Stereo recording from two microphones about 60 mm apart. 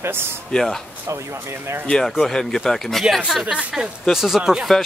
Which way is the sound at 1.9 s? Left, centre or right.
Centre.